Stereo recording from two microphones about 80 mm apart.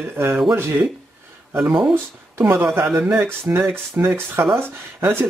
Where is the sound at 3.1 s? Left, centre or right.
Right.